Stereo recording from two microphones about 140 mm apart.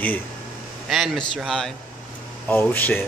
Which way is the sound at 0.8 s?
Centre (ahead or behind).